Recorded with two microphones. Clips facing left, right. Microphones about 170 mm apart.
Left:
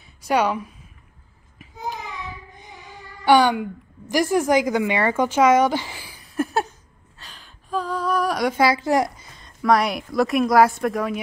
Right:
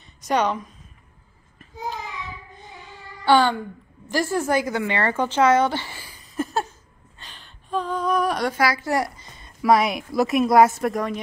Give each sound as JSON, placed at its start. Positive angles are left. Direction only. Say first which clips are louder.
{"t": 0.0, "sound": "a woman's voice", "louder": "left 1 dB", "side_deg": 10}
{"t": 2.5, "sound": "child singing", "louder": "even", "side_deg": 15}
{"t": 4.1, "sound": "speech", "louder": "left 3 dB", "side_deg": 15}
{"t": 6.3, "sound": "a sound", "louder": "left 3 dB", "side_deg": 10}
{"t": 8.5, "sound": "speech", "louder": "left 3 dB", "side_deg": 25}
{"t": 9.2, "sound": "speech", "louder": "even", "side_deg": -5}